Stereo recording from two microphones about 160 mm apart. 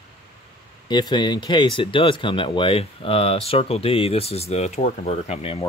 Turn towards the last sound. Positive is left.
turn(degrees=40)  # may be behind; listen again after turning